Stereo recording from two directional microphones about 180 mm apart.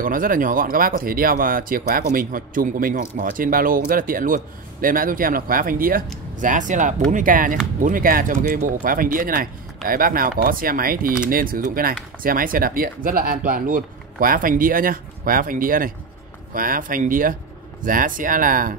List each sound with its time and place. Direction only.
0.0 s speech: 50° right (ahead or behind)